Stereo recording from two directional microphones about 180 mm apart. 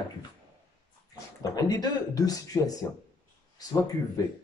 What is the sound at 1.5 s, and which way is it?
Speech, 20° left (ahead or behind).